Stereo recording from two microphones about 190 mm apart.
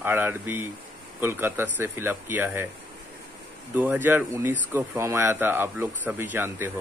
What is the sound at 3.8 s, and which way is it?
Speech, 10° right (ahead or behind).